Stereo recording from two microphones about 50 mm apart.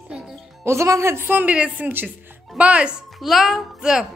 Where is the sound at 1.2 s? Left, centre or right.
Right.